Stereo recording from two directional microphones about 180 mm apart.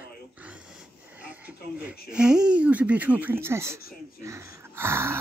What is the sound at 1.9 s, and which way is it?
Speech, 5° right (ahead or behind).